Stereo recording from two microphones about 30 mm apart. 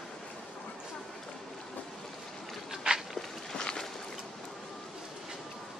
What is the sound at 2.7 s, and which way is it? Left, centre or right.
Walk, centre.